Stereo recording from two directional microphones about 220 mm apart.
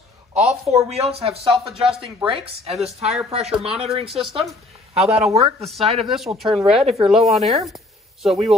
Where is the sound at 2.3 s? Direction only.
25° right (ahead or behind).